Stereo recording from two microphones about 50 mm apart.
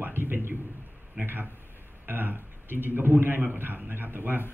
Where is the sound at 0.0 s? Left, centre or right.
Right.